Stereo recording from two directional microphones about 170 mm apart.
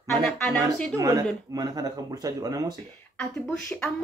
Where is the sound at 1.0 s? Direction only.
20° right (ahead or behind).